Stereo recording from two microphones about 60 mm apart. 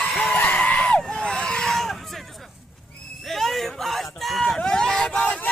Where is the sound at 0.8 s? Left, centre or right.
Centre.